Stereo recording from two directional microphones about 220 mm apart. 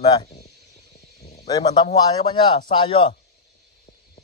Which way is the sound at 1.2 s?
30° left (ahead or behind).